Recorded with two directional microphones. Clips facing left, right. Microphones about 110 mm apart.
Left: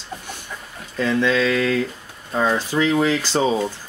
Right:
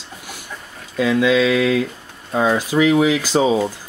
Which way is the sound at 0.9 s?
5° right (ahead or behind).